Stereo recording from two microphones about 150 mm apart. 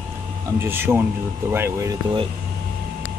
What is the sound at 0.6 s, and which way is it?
Speech, 15° right (ahead or behind).